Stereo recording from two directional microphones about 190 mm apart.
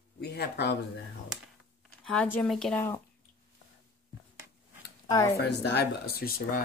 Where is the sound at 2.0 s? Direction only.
5° left (ahead or behind).